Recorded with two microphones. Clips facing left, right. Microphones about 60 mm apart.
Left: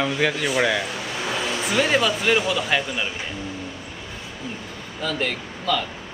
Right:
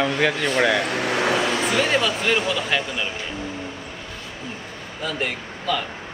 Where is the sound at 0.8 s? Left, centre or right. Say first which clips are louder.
Right 6 dB; right.